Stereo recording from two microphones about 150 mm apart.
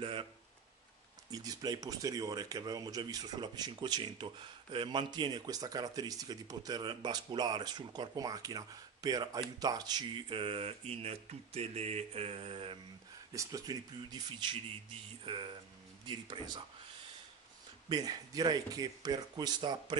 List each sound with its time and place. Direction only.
0.0 s a sound: 35° right (ahead or behind)
1.3 s speech: 25° right (ahead or behind)
13.3 s speech: 20° right (ahead or behind)
17.8 s speech: 25° right (ahead or behind)